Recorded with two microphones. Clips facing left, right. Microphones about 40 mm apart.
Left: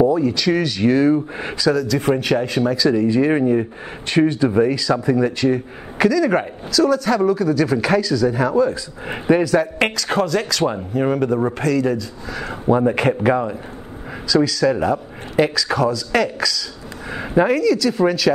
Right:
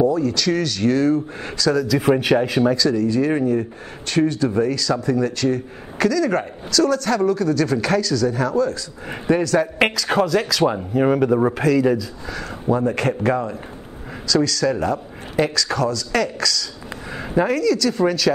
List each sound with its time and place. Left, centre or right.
0.0 s a man's voice: centre
1.7 s speech: centre
2.9 s a man's voice: centre
9.8 s speech: centre
12.4 s a man's voice: left